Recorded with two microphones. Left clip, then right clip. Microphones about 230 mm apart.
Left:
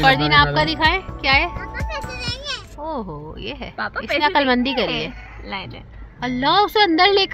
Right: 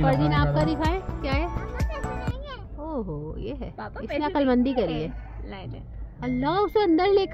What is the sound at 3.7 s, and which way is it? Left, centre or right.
Speech, left.